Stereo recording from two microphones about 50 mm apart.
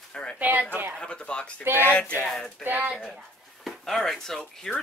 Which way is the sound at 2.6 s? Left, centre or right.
Right.